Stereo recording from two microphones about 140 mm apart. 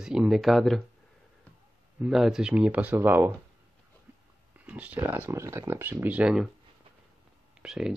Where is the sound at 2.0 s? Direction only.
5° right (ahead or behind).